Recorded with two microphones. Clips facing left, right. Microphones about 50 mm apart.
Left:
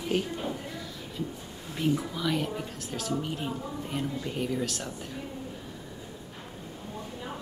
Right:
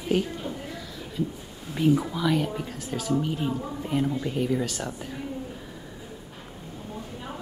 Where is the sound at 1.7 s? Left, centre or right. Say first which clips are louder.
Right 6 dB; centre.